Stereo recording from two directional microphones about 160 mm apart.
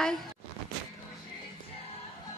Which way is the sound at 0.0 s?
Centre (ahead or behind).